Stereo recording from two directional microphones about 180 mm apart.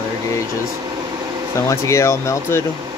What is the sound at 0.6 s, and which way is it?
Air conditioning, 20° right (ahead or behind).